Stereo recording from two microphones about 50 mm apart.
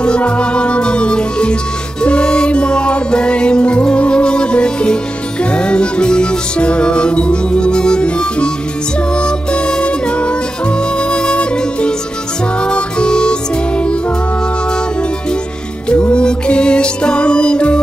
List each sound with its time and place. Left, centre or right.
0.0 s music: left
15.9 s music: centre